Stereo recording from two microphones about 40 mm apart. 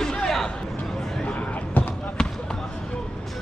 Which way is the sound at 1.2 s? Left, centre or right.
Left.